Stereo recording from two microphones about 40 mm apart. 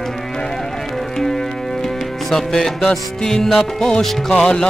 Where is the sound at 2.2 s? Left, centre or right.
Centre.